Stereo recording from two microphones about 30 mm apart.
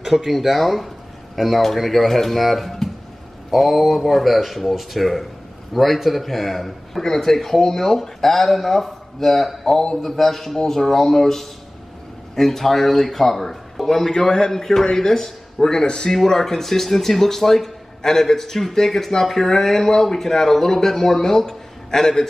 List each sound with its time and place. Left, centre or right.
0.0 s a man's voice: centre